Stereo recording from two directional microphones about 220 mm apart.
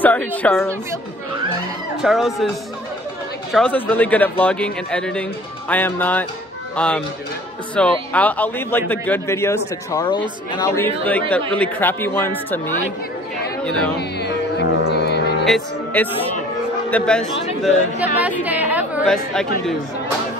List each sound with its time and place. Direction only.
0.0 s a man's voice: 5° left (ahead or behind)
2.0 s a man's voice: centre (ahead or behind)
3.5 s a man's voice: 5° left (ahead or behind)
13.9 s music: 50° left (ahead or behind)
15.4 s a man's voice: 5° left (ahead or behind)
18.4 s a woman's voice: 5° right (ahead or behind)